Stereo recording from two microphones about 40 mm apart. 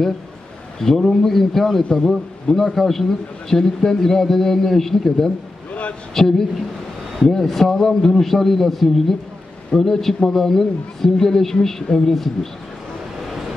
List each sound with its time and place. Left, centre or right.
0.7 s a man's voice: centre
1.8 s a man's voice: centre
5.7 s a sound: left
6.1 s a man's voice: centre